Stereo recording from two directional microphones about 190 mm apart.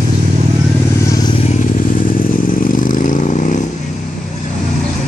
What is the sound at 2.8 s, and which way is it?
Vehicle, 40° left (ahead or behind).